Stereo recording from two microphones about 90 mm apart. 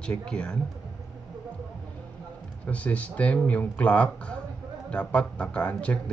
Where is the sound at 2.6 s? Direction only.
15° left (ahead or behind).